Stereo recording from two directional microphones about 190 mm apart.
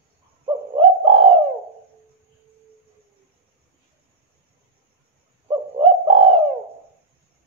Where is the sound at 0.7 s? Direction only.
30° right (ahead or behind).